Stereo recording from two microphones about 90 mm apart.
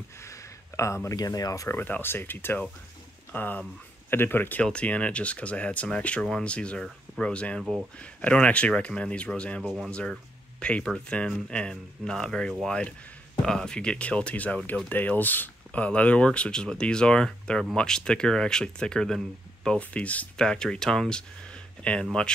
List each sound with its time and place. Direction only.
0.2 s a sound: 35° left (ahead or behind)
1.1 s speech: 45° left (ahead or behind)
1.8 s speech: 25° left (ahead or behind); by 21.2 s 5° left (ahead or behind)